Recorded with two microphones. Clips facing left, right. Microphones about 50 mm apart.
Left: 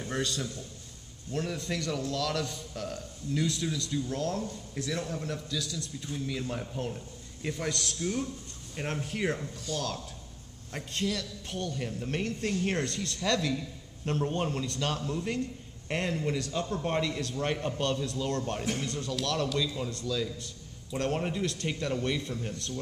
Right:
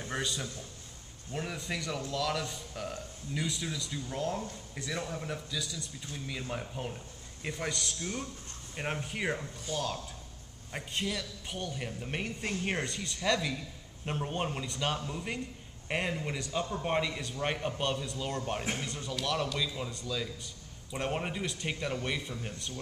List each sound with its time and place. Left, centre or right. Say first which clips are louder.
0.0 s a man's voice: left 3 dB; centre